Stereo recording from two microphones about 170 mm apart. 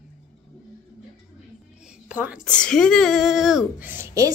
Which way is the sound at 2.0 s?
10° right (ahead or behind).